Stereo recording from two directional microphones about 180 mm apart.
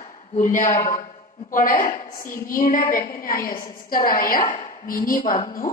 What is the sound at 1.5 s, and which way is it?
A woman's voice, 50° left (ahead or behind).